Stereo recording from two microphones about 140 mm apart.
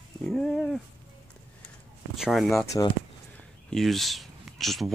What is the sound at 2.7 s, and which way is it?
Speech, 30° left (ahead or behind).